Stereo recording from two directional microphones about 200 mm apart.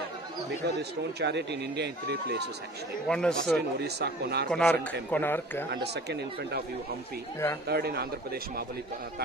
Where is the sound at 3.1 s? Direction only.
5° left (ahead or behind).